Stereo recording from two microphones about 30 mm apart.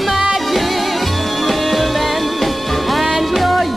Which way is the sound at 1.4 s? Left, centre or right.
Centre.